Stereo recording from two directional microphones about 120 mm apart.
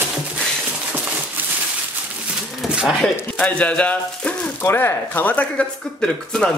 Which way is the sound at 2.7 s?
5° right (ahead or behind).